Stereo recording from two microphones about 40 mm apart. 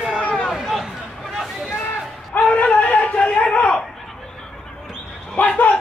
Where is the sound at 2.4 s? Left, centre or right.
Left.